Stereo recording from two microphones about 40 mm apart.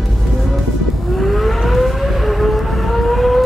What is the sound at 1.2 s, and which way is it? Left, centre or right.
Civil defense siren, centre.